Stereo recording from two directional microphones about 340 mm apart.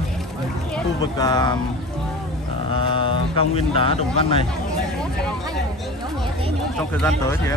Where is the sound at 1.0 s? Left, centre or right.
Centre.